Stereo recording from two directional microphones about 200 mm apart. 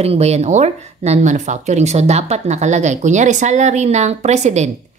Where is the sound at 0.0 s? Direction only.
30° right (ahead or behind).